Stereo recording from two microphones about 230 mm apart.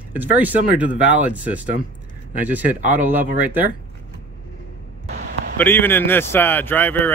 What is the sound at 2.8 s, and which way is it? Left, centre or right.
Speech, right.